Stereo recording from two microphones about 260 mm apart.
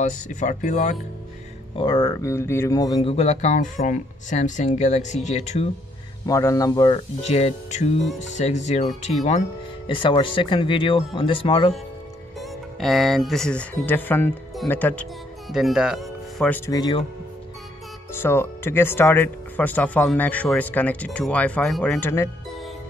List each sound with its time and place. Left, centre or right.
0.0 s speech: left
1.8 s speech: centre
6.2 s speech: centre
12.4 s speech: centre
18.2 s speech: centre